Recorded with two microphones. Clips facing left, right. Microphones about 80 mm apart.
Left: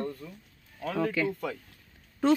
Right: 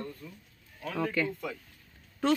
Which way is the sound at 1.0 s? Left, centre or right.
Centre.